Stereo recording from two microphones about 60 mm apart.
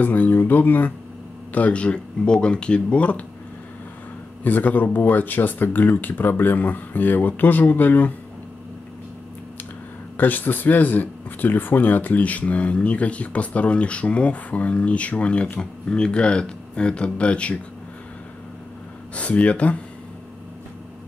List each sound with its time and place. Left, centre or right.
0.0 s speech: left
4.4 s speech: left
10.1 s speech: left
19.1 s speech: left